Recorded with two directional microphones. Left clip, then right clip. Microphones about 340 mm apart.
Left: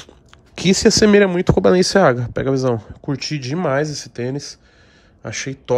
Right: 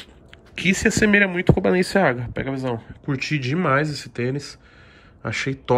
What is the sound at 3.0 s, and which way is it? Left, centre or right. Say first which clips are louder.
A man's voice: even; centre.